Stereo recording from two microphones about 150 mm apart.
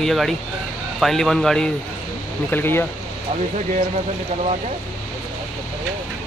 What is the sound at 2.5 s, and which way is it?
Speech, 15° left (ahead or behind).